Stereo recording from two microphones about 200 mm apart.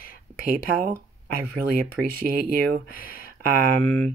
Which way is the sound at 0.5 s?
45° right (ahead or behind).